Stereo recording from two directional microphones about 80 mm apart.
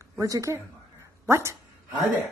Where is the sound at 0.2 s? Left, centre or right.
Right.